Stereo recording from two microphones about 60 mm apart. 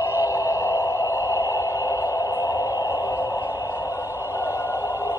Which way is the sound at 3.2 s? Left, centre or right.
Left.